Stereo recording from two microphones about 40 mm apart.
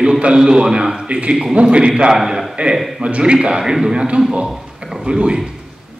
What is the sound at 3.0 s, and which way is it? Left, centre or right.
Speech, right.